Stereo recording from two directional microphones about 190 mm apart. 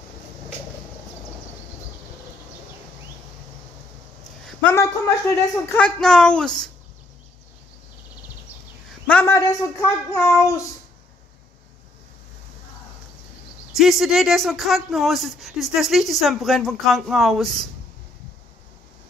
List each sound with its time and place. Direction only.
4.5 s a woman's voice: 10° left (ahead or behind)
5.8 s speech: 5° left (ahead or behind)
9.0 s a woman's voice: 10° left (ahead or behind)
13.7 s speech: centre (ahead or behind)